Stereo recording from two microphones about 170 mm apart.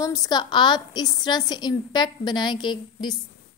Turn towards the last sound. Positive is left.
turn(degrees=25)  # may be behind; listen again after turning